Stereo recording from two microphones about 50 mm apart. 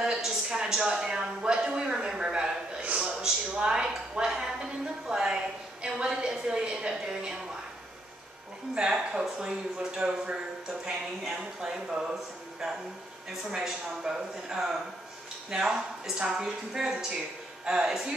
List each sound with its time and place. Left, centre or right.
0.0 s a sound: centre
5.0 s a woman's voice: centre
8.9 s speech: centre